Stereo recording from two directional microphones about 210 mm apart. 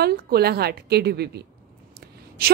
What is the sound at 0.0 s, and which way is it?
Speech, 50° right (ahead or behind).